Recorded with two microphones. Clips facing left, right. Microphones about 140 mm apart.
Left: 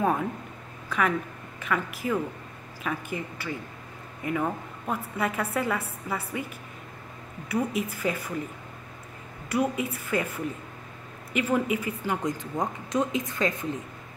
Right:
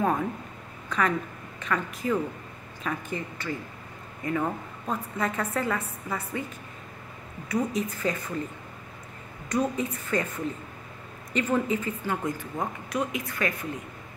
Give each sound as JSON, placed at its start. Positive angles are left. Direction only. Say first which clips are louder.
{"t": 0.8, "sound": "speech", "louder": "even", "side_deg": 5}
{"t": 7.5, "sound": "speech", "louder": "even", "side_deg": 10}
{"t": 9.5, "sound": "speech", "louder": "even", "side_deg": 10}